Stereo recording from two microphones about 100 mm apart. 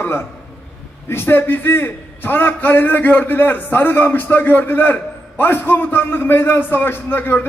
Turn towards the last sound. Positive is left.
turn(degrees=20)  # may be behind; listen again after turning